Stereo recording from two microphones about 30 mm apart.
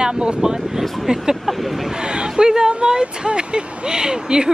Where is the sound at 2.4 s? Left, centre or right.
Right.